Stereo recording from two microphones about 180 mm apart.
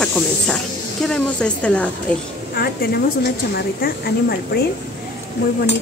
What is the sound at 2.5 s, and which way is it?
Speech, 55° left (ahead or behind).